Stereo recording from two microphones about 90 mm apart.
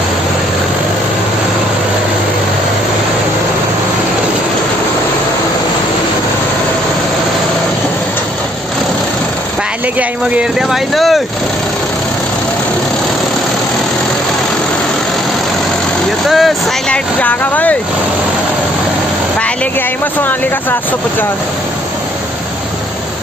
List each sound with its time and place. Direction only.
10.7 s speech: centre (ahead or behind)
16.3 s speech: centre (ahead or behind)
16.9 s speech: 15° left (ahead or behind)